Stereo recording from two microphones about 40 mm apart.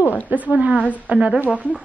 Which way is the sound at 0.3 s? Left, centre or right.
Right.